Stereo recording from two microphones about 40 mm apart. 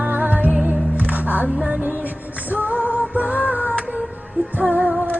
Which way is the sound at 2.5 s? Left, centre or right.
Right.